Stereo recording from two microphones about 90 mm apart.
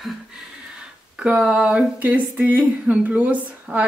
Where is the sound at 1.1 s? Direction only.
10° right (ahead or behind).